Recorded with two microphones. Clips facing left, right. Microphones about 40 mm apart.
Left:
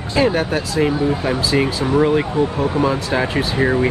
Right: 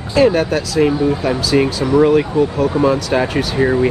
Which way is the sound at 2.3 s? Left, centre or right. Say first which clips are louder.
Right 3 dB; left.